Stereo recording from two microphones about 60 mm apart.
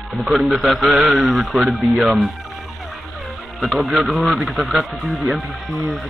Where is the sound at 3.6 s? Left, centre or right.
Centre.